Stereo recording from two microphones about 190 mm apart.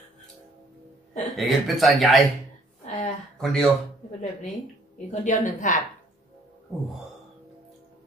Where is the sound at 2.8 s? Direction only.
40° left (ahead or behind).